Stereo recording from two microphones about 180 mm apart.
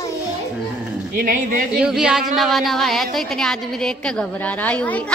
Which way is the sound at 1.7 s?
5° right (ahead or behind).